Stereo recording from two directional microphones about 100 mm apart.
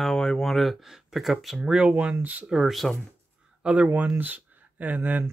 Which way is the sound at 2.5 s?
Centre (ahead or behind).